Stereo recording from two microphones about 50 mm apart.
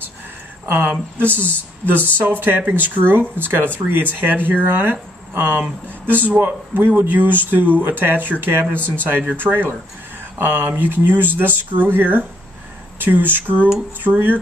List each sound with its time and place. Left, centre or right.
1.1 s speech: right
5.3 s speech: right
5.6 s speech: right